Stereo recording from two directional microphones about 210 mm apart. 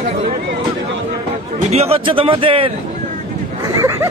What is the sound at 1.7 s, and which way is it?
Speech, 30° right (ahead or behind).